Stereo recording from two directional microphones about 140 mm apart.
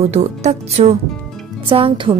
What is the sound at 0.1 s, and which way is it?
Speech, 50° right (ahead or behind).